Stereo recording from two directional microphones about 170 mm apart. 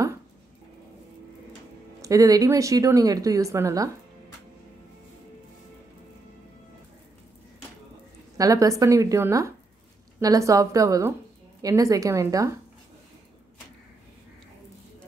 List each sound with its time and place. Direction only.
2.0 s speech: 20° right (ahead or behind)
8.4 s speech: 20° right (ahead or behind)